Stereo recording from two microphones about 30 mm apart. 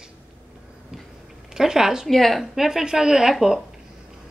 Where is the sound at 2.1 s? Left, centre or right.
Centre.